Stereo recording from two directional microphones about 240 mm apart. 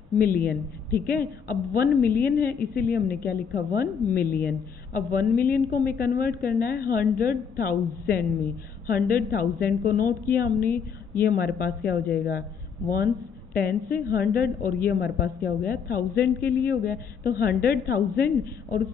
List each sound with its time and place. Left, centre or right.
0.2 s a woman's voice: left